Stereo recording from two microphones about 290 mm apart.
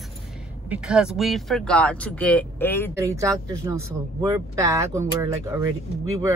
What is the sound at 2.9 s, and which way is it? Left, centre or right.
Speech, centre.